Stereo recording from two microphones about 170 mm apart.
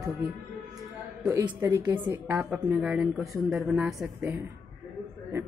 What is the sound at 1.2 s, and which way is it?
Speech, 20° right (ahead or behind).